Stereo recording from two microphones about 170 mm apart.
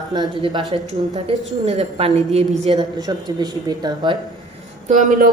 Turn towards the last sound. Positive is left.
turn(degrees=-50)  # may be behind; listen again after turning